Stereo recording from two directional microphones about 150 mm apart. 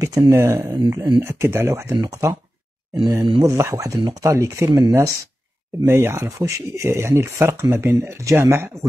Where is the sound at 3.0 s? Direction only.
20° right (ahead or behind).